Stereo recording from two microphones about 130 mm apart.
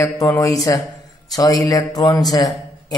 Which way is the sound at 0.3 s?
20° left (ahead or behind).